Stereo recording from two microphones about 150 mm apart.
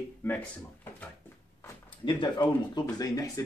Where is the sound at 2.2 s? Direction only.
30° left (ahead or behind).